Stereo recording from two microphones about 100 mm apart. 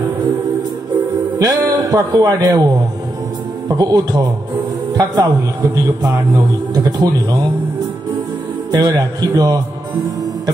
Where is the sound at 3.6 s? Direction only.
40° right (ahead or behind).